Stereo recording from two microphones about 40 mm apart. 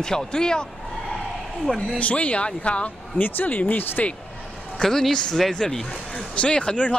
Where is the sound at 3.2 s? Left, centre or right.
Left.